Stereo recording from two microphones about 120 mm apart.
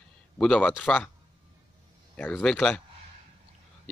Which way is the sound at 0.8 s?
10° left (ahead or behind).